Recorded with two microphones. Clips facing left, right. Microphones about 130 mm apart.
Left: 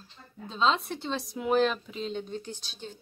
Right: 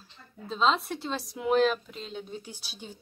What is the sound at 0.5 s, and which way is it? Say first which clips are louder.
Speech: right 1 dB; centre (ahead or behind).